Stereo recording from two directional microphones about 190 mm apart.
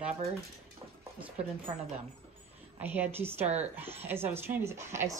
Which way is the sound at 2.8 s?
10° right (ahead or behind).